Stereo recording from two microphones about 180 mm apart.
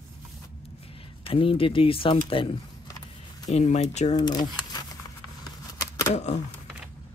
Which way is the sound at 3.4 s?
40° left (ahead or behind).